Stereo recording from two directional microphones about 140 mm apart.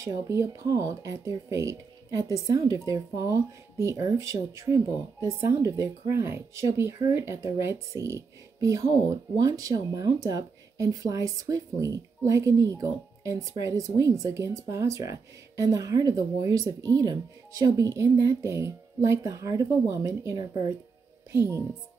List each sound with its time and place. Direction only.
0.0 s speech: 20° right (ahead or behind)